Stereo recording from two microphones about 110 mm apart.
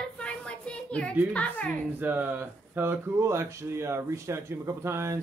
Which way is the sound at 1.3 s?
10° left (ahead or behind).